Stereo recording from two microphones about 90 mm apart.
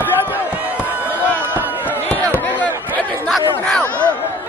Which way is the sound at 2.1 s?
15° left (ahead or behind).